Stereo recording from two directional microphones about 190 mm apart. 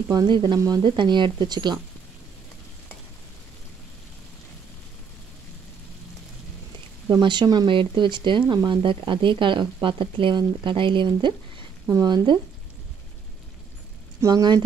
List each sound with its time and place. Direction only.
0.1 s speech: 20° right (ahead or behind)
7.1 s speech: 25° right (ahead or behind)
14.2 s speech: 20° right (ahead or behind)